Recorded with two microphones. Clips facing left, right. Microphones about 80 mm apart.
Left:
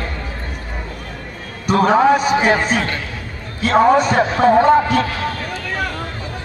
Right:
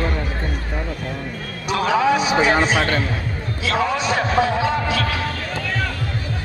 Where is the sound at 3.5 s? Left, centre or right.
Left.